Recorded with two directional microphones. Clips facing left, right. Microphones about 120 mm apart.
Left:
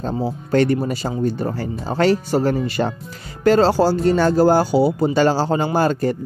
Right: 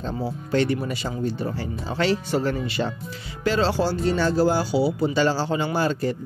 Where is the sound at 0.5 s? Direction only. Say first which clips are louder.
Left 5 dB; 50° left (ahead or behind).